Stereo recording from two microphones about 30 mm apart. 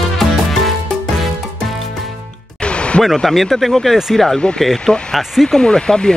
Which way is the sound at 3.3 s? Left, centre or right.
Centre.